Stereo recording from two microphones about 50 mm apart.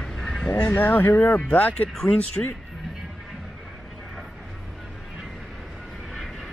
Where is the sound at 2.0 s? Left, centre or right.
Left.